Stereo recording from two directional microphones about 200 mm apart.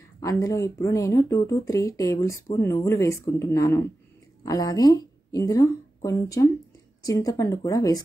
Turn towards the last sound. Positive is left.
turn(degrees=20)  # may be behind; listen again after turning